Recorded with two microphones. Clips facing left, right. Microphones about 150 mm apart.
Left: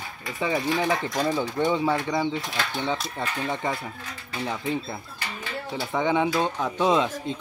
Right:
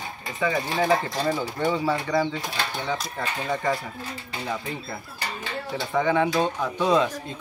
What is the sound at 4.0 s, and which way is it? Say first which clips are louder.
Speech: right 3 dB; 30° right (ahead or behind).